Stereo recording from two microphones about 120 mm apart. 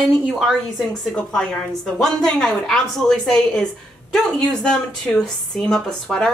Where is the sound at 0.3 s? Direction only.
Centre (ahead or behind).